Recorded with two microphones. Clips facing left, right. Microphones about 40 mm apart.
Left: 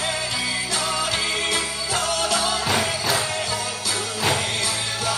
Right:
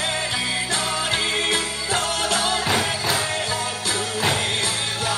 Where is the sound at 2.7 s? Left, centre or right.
Centre.